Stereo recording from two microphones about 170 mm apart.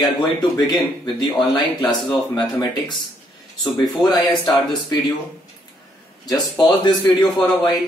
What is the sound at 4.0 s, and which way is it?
Speech, 25° left (ahead or behind).